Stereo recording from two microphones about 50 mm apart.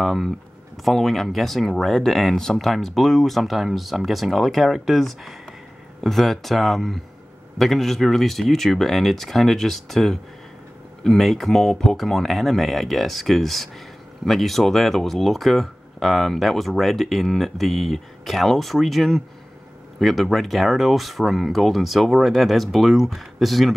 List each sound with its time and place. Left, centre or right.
0.0 s speech: centre
6.0 s speech: centre